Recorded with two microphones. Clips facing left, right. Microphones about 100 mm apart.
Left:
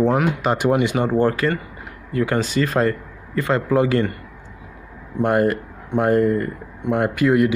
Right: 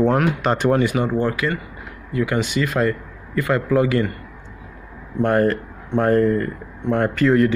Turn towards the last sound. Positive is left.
turn(degrees=15)  # may be behind; listen again after turning